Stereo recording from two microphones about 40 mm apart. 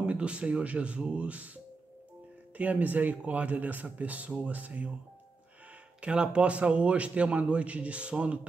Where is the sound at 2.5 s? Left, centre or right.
Right.